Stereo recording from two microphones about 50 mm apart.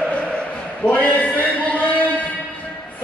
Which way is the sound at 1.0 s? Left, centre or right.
Left.